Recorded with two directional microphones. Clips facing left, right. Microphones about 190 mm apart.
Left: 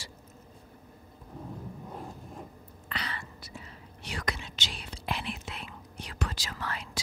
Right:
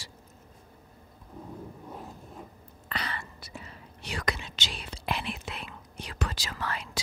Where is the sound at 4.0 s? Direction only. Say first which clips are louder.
Right 3 dB; 90° right.